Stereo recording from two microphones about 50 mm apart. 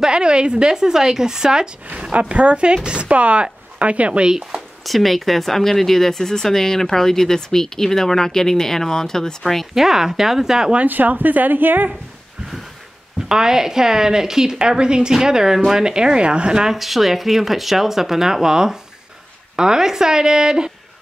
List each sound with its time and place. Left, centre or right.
0.0 s a woman's voice: centre
2.1 s speech: right
4.3 s speech: centre
4.8 s speech: centre
9.8 s a woman's voice: centre
10.9 s a woman's voice: right
13.3 s a woman's voice: centre
16.7 s a woman's voice: centre